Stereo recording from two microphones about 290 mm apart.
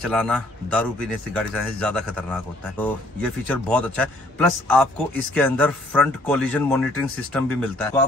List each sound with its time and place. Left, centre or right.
0.0 s a man's voice: centre